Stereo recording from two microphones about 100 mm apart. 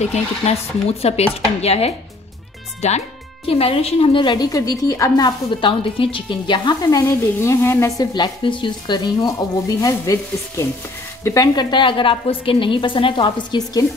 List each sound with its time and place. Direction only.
0.0 s speech: 90° left
3.4 s a woman's voice: 75° left (ahead or behind); by 4.5 s 55° left (ahead or behind)
4.5 s a woman's voice: 35° left (ahead or behind)
5.7 s speech: 60° left (ahead or behind); by 7.1 s 40° left (ahead or behind)
7.3 s a woman's voice: 25° left (ahead or behind)
8.0 s speech: 50° left (ahead or behind)
9.8 s a woman's voice: 35° left (ahead or behind)
11.2 s a woman's voice: 35° left (ahead or behind); by 13.6 s 60° left (ahead or behind)